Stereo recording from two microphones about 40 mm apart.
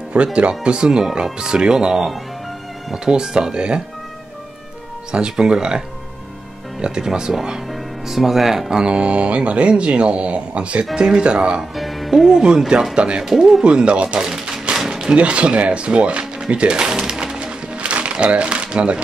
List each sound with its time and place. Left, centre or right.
0.1 s speech: right
3.1 s speech: centre
5.3 s speech: centre
11.7 s music: centre
12.3 s speech: centre
13.2 s speech: centre
13.7 s speech: right
14.2 s a sound: centre
15.1 s speech: right
16.9 s music: centre
17.7 s music: right